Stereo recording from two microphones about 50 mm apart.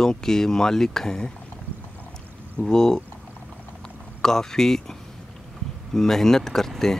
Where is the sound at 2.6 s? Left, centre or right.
Centre.